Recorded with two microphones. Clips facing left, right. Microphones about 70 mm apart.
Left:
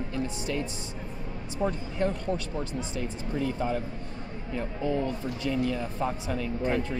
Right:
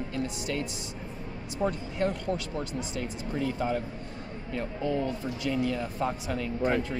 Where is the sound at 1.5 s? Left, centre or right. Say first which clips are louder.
Even; centre.